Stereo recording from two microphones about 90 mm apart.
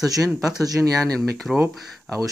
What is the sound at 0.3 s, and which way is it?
Speech, 5° right (ahead or behind).